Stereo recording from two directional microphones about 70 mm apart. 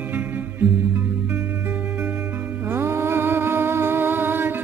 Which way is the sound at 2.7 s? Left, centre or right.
Right.